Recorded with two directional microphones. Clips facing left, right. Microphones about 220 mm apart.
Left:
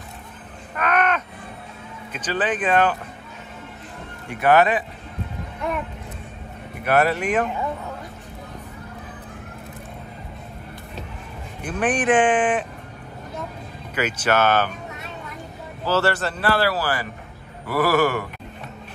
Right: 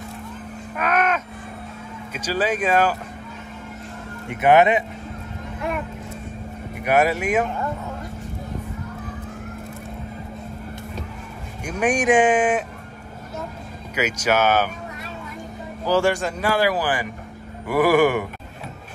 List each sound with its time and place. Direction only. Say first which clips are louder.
0.7 s caw: even; 5° right (ahead or behind)
2.1 s speech: right 1 dB; 10° right (ahead or behind)
4.3 s speech: right 2 dB; 20° right (ahead or behind)
6.8 s speech: even; 10° right (ahead or behind)
11.6 s speech: right 1 dB; 10° right (ahead or behind)
13.9 s speech: even; 10° right (ahead or behind)
15.8 s speech: right 2 dB; 15° right (ahead or behind)